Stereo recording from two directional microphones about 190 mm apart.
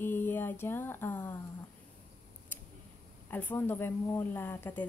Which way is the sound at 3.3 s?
10° left (ahead or behind).